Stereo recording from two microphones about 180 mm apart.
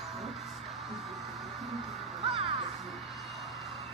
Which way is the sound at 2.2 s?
30° right (ahead or behind).